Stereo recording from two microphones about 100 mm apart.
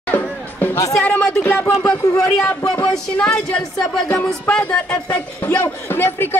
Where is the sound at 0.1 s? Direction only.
20° left (ahead or behind).